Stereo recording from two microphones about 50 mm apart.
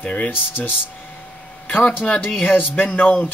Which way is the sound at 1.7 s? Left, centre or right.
Left.